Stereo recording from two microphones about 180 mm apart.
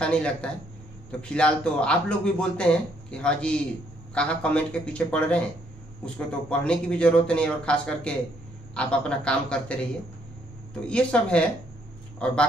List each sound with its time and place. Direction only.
0.0 s a man's voice: 5° left (ahead or behind)
10.9 s a man's voice: 5° left (ahead or behind)